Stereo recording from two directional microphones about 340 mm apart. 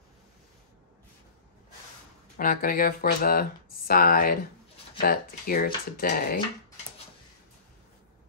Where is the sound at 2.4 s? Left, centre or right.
Left.